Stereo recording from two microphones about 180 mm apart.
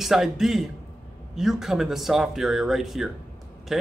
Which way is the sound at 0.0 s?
Centre (ahead or behind).